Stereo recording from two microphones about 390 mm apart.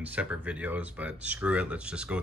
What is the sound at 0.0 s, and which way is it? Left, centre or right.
Speech, centre.